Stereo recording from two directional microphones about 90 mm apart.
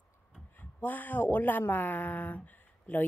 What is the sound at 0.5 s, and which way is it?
Speech, 20° left (ahead or behind).